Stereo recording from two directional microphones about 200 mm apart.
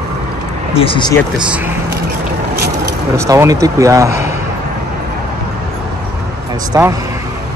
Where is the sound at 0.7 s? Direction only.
25° left (ahead or behind).